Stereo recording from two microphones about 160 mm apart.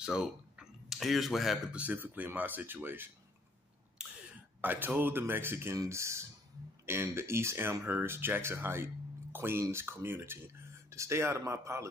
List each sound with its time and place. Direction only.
0.0 s speech: 5° right (ahead or behind)
4.2 s speech: 10° right (ahead or behind)